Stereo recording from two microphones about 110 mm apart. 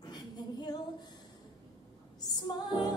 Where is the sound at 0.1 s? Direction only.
40° left (ahead or behind).